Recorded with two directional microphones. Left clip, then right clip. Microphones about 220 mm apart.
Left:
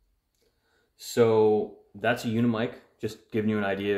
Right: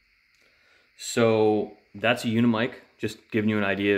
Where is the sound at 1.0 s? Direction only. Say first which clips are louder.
Even; 40° right (ahead or behind).